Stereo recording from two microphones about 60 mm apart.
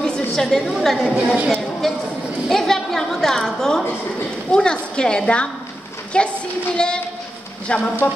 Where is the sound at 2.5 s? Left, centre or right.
Centre.